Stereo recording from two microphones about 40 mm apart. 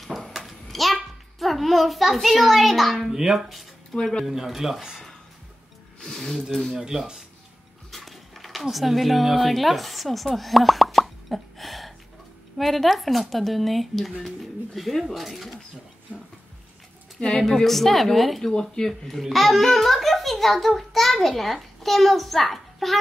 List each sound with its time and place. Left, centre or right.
0.0 s a sound: centre
1.4 s a child's voice: centre
3.1 s speech: centre
3.9 s a child's voice: centre
4.3 s speech: centre
5.9 s speech: centre
6.7 s speech: centre
7.9 s a sound: centre
8.6 s a child's voice: centre
17.4 s a child's voice: centre
18.5 s speech: centre
18.9 s a child's voice: centre